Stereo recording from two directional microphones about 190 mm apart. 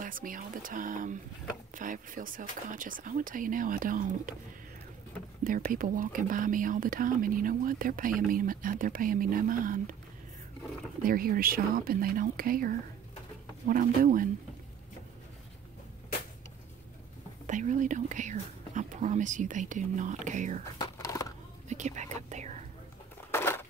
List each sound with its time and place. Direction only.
0.0 s speech: 45° right (ahead or behind)
5.4 s speech: 45° right (ahead or behind)
11.0 s speech: 50° right (ahead or behind)
17.5 s speech: 40° right (ahead or behind)
20.7 s a sound: 20° left (ahead or behind)
21.6 s whispering: 40° right (ahead or behind)
23.3 s a sound: 10° left (ahead or behind)